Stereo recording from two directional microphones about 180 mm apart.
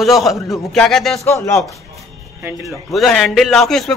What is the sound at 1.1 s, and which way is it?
Speech, 15° left (ahead or behind).